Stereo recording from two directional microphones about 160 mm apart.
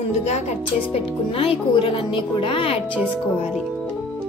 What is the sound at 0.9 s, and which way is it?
Speech, 35° left (ahead or behind).